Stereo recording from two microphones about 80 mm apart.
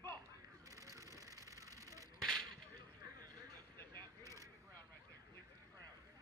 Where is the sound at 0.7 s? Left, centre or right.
Right.